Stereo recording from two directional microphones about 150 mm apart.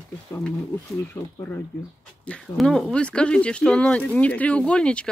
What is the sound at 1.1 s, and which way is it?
Speech, 15° left (ahead or behind).